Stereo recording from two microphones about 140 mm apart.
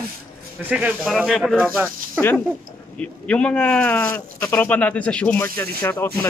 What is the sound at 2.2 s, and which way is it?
Speech, 10° right (ahead or behind).